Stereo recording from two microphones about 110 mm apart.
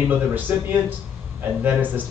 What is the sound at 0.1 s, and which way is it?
Speech, 15° right (ahead or behind).